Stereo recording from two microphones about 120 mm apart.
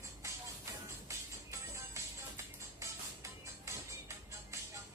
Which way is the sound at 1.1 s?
25° right (ahead or behind).